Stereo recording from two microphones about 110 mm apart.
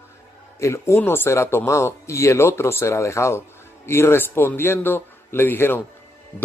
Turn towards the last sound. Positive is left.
turn(degrees=20)  # may be behind; listen again after turning